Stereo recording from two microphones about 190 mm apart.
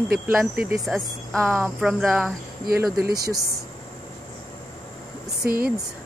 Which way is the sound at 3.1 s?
20° right (ahead or behind).